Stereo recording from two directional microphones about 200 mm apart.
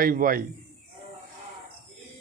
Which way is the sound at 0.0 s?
45° right (ahead or behind).